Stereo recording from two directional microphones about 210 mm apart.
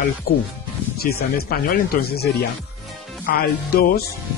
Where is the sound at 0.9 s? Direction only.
45° left (ahead or behind).